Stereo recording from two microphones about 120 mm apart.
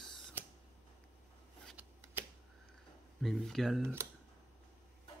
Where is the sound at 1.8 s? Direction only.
10° right (ahead or behind).